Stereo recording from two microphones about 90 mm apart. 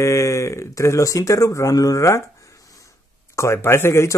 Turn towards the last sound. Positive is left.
turn(degrees=30)  # may be behind; listen again after turning